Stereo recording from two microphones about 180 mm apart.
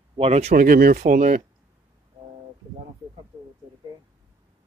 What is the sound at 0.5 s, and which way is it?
Speech, 50° right (ahead or behind).